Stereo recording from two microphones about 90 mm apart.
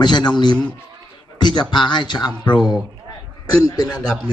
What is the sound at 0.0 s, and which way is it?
A man's voice, 55° left (ahead or behind).